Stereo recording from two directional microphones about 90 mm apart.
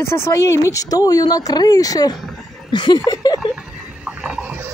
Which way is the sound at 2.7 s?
60° left (ahead or behind).